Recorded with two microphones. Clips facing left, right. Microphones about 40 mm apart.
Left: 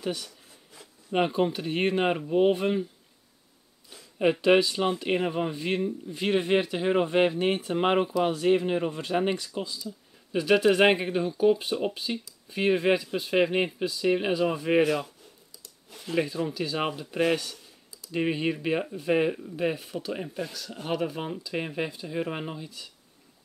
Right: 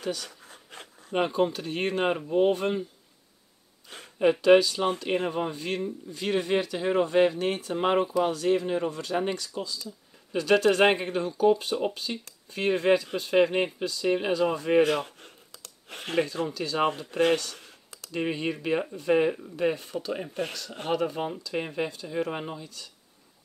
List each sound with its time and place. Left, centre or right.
0.5 s dog: right
1.1 s speech: centre
4.2 s speech: centre
14.9 s a sound: right
16.5 s speech: centre
17.6 s computer keyboard: right
18.1 s speech: centre